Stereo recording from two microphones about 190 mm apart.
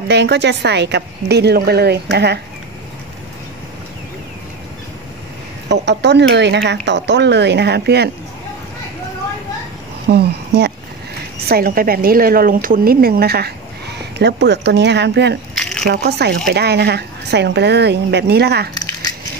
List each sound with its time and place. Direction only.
0.1 s speech: 65° right (ahead or behind)
5.7 s speech: 65° right (ahead or behind)
10.0 s a sound: 60° right (ahead or behind)
11.4 s speech: 50° right (ahead or behind)
15.5 s a sound: centre (ahead or behind)
15.9 s speech: 60° right (ahead or behind)
18.8 s crushing: 20° left (ahead or behind)